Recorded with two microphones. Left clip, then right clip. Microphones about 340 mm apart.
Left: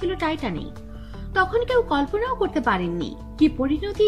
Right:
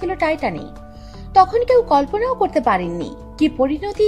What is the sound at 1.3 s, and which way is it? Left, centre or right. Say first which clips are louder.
Speech: right 7 dB; right.